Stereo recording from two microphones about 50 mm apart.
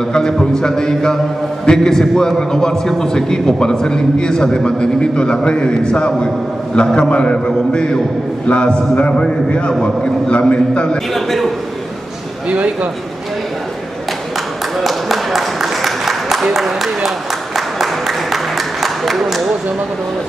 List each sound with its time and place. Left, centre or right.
0.1 s a man's voice: centre
11.1 s a man's voice: centre
12.4 s a man's voice: right
14.8 s a sound: centre